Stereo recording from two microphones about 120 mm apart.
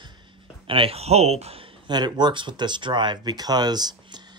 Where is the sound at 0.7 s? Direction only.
50° right (ahead or behind).